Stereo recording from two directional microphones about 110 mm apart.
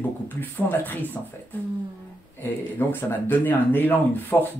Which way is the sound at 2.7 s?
20° left (ahead or behind).